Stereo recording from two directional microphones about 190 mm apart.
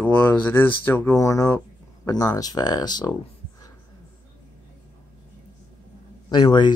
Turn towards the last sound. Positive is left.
turn(degrees=25)  # may be behind; listen again after turning